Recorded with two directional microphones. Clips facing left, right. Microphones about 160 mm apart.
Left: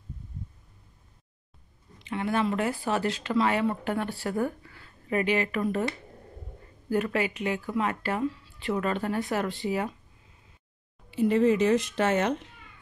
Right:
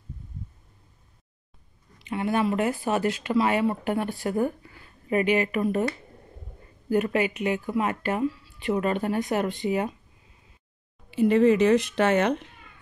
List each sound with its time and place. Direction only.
2.0 s speech: 15° right (ahead or behind)
6.9 s speech: 15° right (ahead or behind)
11.1 s speech: 70° right (ahead or behind)